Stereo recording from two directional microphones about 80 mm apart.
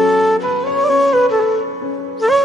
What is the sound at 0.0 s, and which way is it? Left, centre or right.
Music, centre.